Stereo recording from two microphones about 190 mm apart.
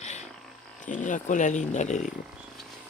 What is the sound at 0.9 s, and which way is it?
Speech, 40° left (ahead or behind).